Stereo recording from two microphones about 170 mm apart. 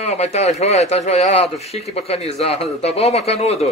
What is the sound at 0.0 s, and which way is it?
A man's voice, 40° left (ahead or behind).